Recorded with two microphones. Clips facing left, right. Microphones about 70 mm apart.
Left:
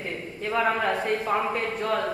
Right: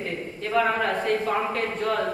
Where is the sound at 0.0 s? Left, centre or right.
Centre.